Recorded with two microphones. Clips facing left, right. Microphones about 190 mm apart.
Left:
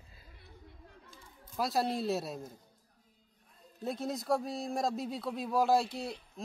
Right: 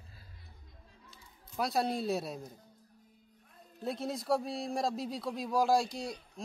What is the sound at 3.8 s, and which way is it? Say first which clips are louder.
A man's voice: even; centre (ahead or behind).